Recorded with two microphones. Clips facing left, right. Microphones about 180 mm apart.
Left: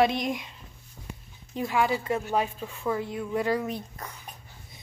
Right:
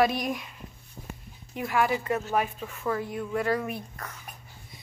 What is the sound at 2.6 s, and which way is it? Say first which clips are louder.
A woman's voice: left 1 dB; 10° left (ahead or behind).